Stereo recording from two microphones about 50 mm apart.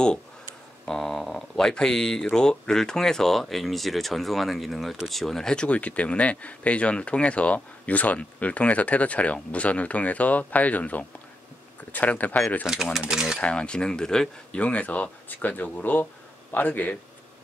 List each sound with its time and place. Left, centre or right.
0.8 s speech: centre
5.7 s speech: left
13.1 s speech: centre
13.4 s speech: left
14.5 s speech: left